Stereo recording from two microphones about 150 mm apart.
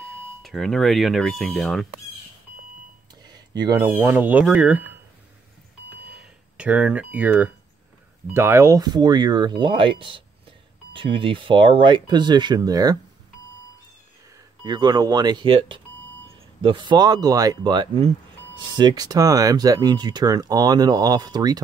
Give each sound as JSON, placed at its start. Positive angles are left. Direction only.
{"t": 0.4, "sound": "speech", "side_deg": 0}
{"t": 3.3, "sound": "a sound", "side_deg": -25}
{"t": 3.8, "sound": "speech", "side_deg": -15}
{"t": 6.1, "sound": "a sound", "side_deg": -5}
{"t": 8.3, "sound": "speech", "side_deg": -15}
{"t": 14.6, "sound": "speech", "side_deg": -30}